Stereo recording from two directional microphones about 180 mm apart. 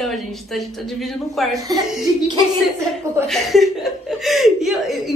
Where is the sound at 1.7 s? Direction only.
20° right (ahead or behind).